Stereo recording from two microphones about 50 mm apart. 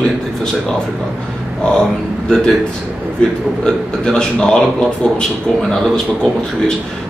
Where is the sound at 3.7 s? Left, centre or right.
Centre.